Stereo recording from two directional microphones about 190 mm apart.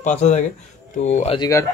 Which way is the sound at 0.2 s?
40° left (ahead or behind).